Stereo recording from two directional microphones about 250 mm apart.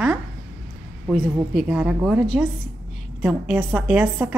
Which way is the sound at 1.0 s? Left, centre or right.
Centre.